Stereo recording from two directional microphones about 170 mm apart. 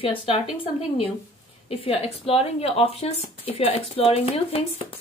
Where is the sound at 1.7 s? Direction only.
35° left (ahead or behind).